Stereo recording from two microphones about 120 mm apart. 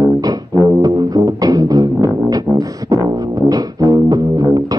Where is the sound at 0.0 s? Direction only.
30° right (ahead or behind).